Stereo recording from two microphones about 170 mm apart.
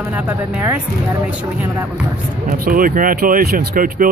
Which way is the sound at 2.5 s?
55° right (ahead or behind).